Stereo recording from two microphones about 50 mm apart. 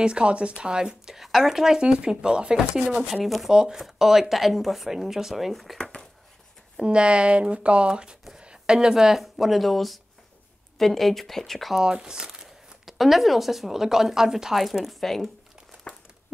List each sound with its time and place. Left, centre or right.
0.0 s speech: right
3.3 s speech: centre
3.5 s speech: centre
5.8 s a sound: centre
6.8 s speech: centre
11.7 s speech: centre